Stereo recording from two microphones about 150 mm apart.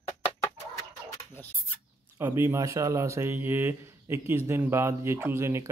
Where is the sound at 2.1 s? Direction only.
15° right (ahead or behind).